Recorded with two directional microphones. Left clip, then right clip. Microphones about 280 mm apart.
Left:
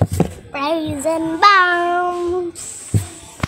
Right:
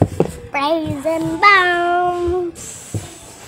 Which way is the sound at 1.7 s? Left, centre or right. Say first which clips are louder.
Right 1 dB; centre.